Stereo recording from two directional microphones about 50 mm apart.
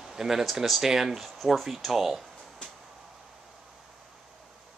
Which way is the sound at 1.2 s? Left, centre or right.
Centre.